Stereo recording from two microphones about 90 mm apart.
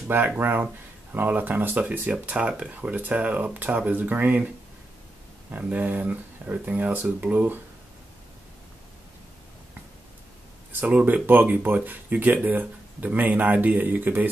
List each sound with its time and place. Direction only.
0.4 s speech: 25° right (ahead or behind)
5.5 s speech: 15° right (ahead or behind)
10.7 s speech: 15° right (ahead or behind)